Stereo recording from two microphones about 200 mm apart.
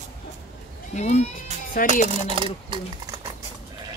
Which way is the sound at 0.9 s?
35° left (ahead or behind).